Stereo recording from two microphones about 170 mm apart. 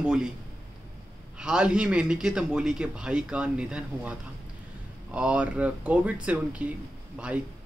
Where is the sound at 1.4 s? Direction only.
5° right (ahead or behind).